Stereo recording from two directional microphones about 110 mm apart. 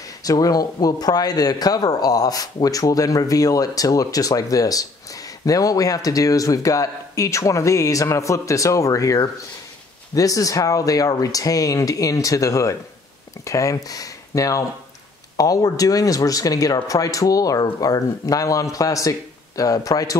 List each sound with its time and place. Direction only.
0.2 s speech: 35° left (ahead or behind)